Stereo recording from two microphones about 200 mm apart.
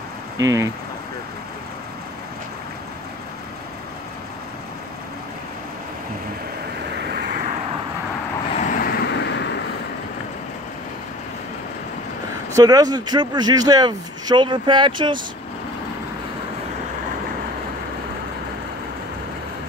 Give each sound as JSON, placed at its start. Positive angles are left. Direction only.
{"t": 0.4, "sound": "speech", "side_deg": -15}
{"t": 8.5, "sound": "vehicle", "side_deg": 40}
{"t": 12.5, "sound": "speech", "side_deg": -20}